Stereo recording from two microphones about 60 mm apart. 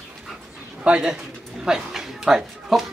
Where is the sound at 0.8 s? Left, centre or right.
Centre.